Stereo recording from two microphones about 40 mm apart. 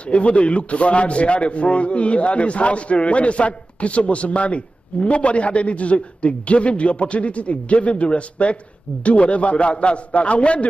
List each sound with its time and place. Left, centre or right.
0.0 s a man's voice: left